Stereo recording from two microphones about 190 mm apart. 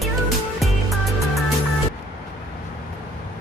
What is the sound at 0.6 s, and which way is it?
Music, centre (ahead or behind).